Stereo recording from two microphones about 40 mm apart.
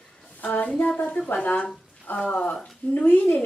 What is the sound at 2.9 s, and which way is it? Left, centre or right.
Speech, left.